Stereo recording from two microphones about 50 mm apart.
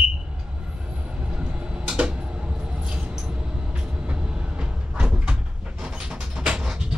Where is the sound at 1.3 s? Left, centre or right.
Centre.